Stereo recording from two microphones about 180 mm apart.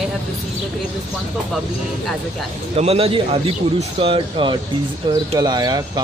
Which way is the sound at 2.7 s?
35° right (ahead or behind).